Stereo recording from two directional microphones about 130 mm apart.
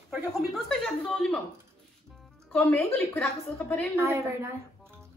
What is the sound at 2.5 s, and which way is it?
Speech, 15° left (ahead or behind).